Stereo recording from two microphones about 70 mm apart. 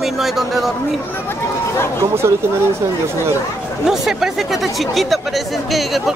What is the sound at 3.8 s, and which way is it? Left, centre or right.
Speech, centre.